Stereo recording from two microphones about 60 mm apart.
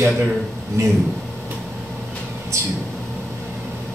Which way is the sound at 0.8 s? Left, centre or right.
Right.